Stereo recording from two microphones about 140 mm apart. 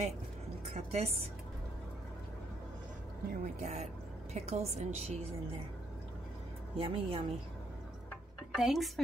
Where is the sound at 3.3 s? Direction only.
60° right (ahead or behind).